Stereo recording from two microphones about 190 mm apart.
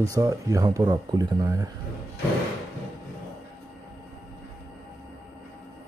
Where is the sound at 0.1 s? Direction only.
15° right (ahead or behind).